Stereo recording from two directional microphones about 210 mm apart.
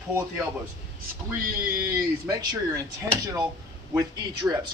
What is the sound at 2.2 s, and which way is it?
Speech, 15° right (ahead or behind).